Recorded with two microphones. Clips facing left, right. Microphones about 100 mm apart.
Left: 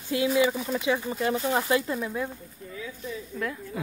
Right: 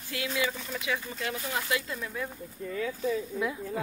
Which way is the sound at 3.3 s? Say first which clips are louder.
Right 1 dB; 10° right (ahead or behind).